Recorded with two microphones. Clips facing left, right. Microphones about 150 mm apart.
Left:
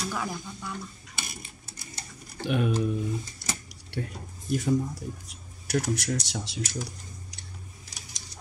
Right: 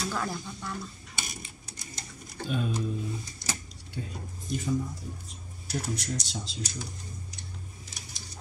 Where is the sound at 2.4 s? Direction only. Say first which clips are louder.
Left 4 dB; 70° left (ahead or behind).